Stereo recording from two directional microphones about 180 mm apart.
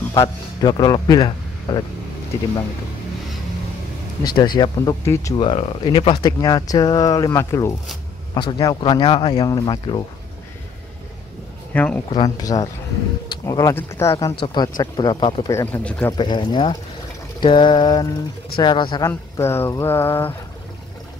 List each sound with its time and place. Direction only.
0.1 s a man's voice: 20° left (ahead or behind)
4.6 s speech: 15° left (ahead or behind)
5.4 s speech: 30° left (ahead or behind)
11.7 s speech: 10° left (ahead or behind)
12.1 s speech: 20° left (ahead or behind)
15.5 s speech: 15° left (ahead or behind)
16.1 s speech: 25° left (ahead or behind)
19.0 s speech: 15° left (ahead or behind)